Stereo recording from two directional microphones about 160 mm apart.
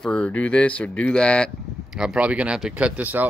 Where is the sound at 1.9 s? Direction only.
5° right (ahead or behind).